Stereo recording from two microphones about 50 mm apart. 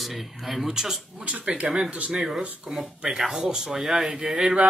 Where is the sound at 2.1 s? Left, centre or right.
Centre.